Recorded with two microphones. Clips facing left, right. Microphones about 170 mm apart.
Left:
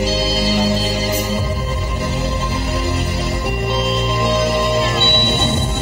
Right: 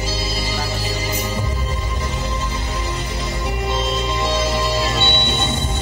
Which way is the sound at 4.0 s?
60° left (ahead or behind).